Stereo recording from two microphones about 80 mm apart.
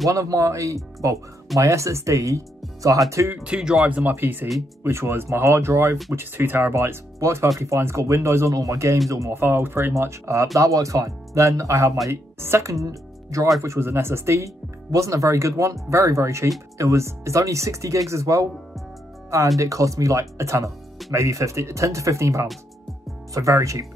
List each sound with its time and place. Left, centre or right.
0.1 s speech: right
3.4 s speech: centre; by 23.9 s right